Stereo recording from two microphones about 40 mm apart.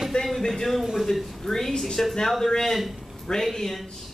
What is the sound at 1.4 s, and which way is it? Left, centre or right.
Speech, centre.